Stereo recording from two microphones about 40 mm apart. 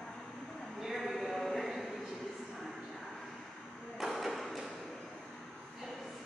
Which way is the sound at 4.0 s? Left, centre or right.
Centre.